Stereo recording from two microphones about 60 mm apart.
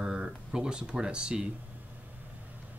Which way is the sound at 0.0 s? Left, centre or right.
Centre.